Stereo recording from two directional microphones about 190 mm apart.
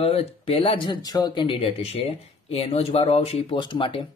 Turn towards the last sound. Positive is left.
turn(degrees=25)  # may be behind; listen again after turning